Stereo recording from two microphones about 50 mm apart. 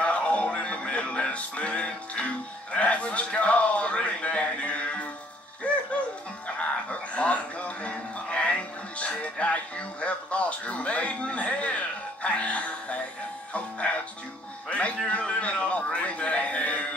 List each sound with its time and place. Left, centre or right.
0.0 s music: left
6.4 s music: left
15.0 s a sound: left